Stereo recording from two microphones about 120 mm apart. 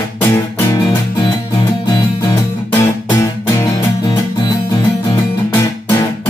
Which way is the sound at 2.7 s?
20° left (ahead or behind).